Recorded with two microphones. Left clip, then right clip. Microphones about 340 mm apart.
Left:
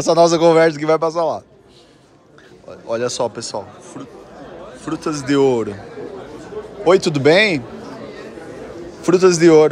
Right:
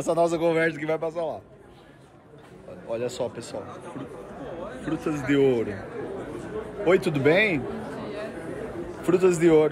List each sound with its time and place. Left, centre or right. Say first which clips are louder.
0.1 s speech: left 11 dB; centre
2.9 s speech: left 9 dB; left
4.8 s speech: left 6 dB; centre
6.8 s speech: left 8 dB; centre
9.0 s speech: left 9 dB; centre